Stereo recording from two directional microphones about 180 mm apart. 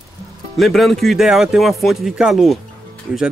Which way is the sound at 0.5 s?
Centre (ahead or behind).